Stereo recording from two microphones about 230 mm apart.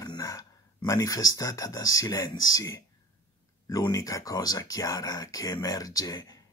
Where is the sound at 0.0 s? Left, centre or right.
Centre.